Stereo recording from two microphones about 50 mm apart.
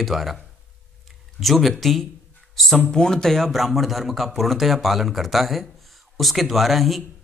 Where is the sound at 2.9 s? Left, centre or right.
Centre.